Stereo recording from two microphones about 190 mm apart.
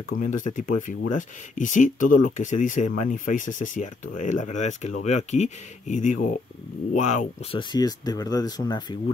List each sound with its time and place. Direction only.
0.1 s speech: 40° left (ahead or behind)
7.5 s speech: 20° left (ahead or behind)